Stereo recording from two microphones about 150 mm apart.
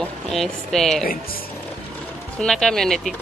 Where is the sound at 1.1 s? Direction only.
80° left.